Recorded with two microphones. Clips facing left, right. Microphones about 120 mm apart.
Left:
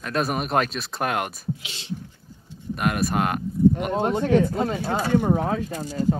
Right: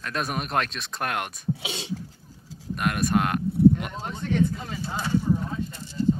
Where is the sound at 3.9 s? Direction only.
55° left (ahead or behind); by 5.7 s 85° left.